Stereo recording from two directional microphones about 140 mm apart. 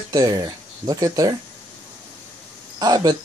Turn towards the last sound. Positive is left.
turn(degrees=-30)  # may be behind; listen again after turning